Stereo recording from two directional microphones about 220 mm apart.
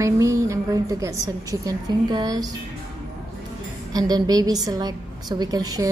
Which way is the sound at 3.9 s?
15° right (ahead or behind).